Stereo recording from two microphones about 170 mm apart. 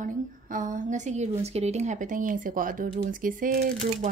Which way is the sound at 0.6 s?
45° right (ahead or behind).